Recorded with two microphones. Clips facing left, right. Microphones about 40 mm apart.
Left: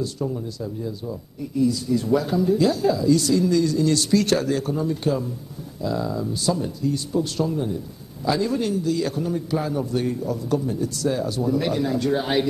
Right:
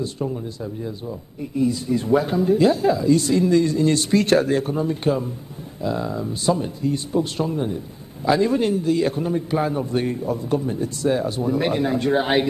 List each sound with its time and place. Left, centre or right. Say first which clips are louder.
0.0 s a man's voice: right 1 dB; right